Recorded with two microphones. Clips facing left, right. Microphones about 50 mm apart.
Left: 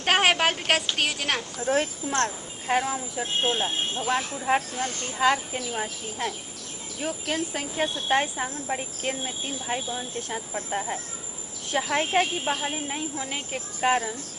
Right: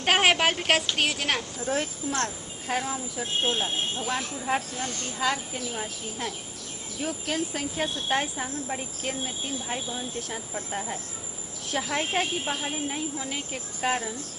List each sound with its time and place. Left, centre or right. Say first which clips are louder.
0.0 s a woman's voice: even; centre
1.6 s speech: left 4 dB; centre